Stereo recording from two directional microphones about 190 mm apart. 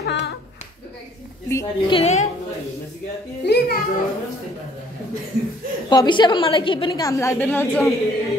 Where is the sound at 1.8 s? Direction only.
30° left (ahead or behind).